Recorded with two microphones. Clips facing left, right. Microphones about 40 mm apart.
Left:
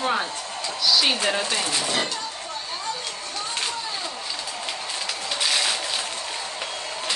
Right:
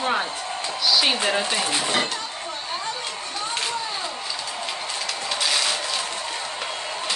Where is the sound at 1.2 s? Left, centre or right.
Centre.